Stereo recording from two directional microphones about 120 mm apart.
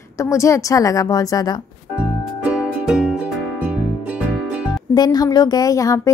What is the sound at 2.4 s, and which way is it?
Music, 5° right (ahead or behind).